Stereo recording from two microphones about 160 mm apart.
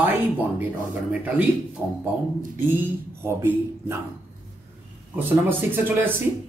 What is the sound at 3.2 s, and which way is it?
Speech, 15° right (ahead or behind).